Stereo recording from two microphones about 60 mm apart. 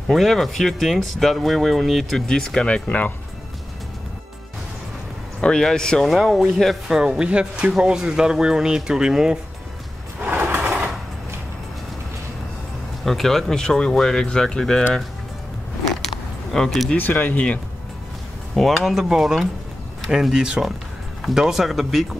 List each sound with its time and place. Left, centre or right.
0.1 s speech: centre; by 3.1 s left
5.4 s speech: centre
6.0 s speech: centre
6.9 s speech: centre
10.2 s vehicle: right
13.0 s speech: centre
16.5 s speech: centre
16.9 s speech: left
18.5 s speech: centre